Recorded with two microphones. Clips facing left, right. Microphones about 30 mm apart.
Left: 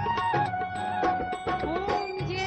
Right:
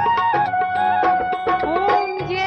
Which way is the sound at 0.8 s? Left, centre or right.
Right.